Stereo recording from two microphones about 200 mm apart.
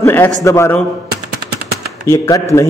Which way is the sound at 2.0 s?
15° left (ahead or behind).